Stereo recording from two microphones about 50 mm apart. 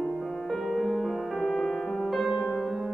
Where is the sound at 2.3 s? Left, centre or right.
Centre.